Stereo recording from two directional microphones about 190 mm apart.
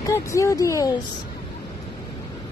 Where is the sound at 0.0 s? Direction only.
15° left (ahead or behind).